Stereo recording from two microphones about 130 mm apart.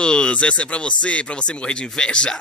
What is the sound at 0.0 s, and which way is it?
Speech, 10° left (ahead or behind).